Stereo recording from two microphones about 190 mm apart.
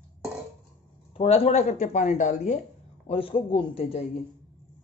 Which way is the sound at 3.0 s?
30° left (ahead or behind).